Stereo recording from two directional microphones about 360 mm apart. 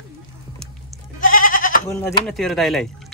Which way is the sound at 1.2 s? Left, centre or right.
Left.